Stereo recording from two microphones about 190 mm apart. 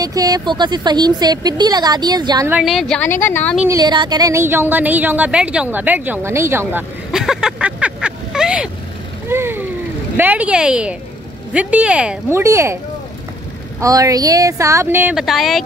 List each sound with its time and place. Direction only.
0.0 s a woman's voice: 20° right (ahead or behind)
2.5 s speech: centre (ahead or behind)
3.5 s speech: 15° right (ahead or behind)
9.3 s a sound: 10° right (ahead or behind)
10.1 s speech: 10° right (ahead or behind)
13.7 s speech: 20° right (ahead or behind); by 15.6 s centre (ahead or behind)